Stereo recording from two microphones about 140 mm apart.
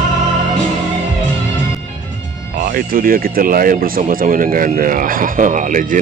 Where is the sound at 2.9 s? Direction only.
90° right.